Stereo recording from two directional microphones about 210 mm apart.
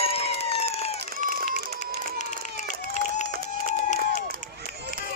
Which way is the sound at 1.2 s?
40° right (ahead or behind).